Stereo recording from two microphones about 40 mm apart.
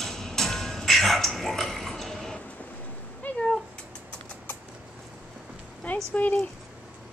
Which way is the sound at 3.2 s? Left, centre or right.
Left.